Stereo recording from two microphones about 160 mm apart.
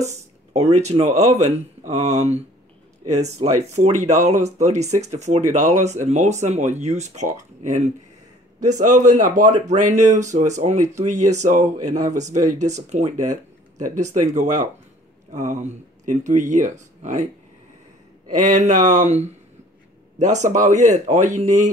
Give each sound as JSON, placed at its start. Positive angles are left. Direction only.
{"t": 0.0, "sound": "speech", "side_deg": -45}
{"t": 18.3, "sound": "speech", "side_deg": -50}